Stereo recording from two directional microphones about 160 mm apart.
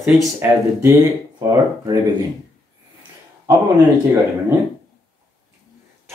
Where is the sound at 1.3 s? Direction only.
25° right (ahead or behind).